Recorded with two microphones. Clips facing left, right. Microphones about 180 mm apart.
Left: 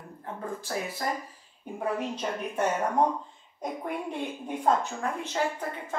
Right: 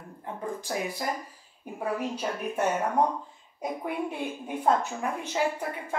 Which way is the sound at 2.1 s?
10° right (ahead or behind).